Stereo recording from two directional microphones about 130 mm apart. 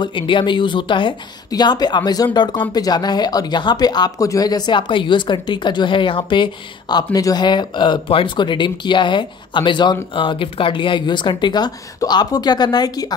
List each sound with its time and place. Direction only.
0.0 s speech: 40° left (ahead or behind)